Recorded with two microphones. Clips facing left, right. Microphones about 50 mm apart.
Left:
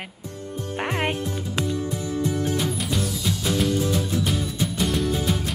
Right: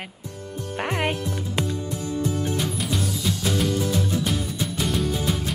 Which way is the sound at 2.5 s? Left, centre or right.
Centre.